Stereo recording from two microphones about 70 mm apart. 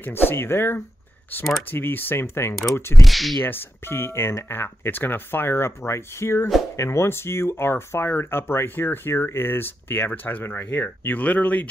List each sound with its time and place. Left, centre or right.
0.0 s speech: left
3.0 s speech: centre
3.4 s speech: left